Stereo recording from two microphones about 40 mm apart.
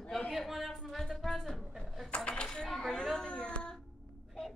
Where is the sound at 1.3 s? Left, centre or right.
Centre.